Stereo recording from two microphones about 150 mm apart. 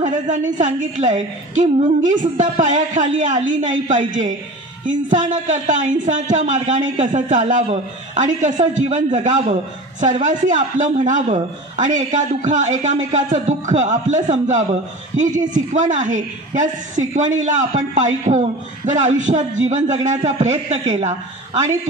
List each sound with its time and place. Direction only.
0.0 s a woman's voice: 60° right (ahead or behind)